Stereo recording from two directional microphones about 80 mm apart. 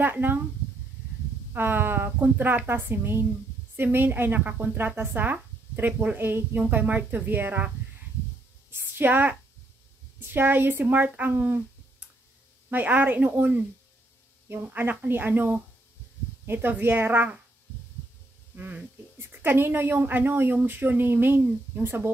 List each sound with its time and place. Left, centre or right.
0.0 s speech: right
1.5 s speech: right
8.7 s a sound: right
10.2 s speech: right
12.6 s speech: right
18.5 s speech: right